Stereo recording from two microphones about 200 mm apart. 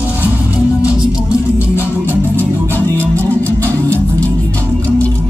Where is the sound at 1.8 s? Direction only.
10° left (ahead or behind).